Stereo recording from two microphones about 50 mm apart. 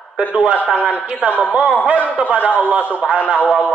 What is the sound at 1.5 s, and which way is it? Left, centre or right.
A man's voice, right.